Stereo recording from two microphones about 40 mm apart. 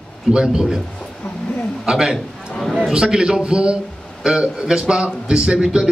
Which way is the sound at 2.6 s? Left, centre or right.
Centre.